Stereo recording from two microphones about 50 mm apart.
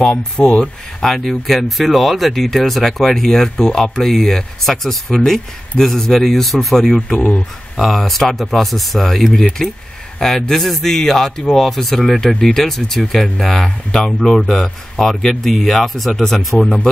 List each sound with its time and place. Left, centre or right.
0.1 s speech: centre
1.0 s speech: centre
7.2 s speech: left
7.7 s speech: centre